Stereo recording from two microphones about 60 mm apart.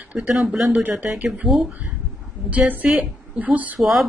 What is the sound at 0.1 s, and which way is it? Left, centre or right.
Speech, centre.